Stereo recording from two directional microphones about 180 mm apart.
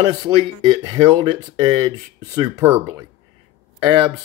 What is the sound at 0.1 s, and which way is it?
Speech, 20° right (ahead or behind).